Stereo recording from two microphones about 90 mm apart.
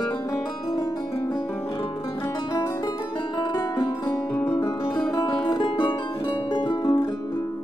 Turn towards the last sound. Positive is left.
turn(degrees=60)  # may be behind; listen again after turning